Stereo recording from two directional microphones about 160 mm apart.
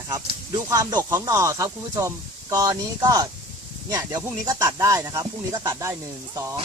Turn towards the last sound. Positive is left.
turn(degrees=-20)  # may be behind; listen again after turning